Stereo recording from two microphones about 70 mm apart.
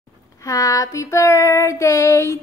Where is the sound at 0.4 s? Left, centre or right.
Left.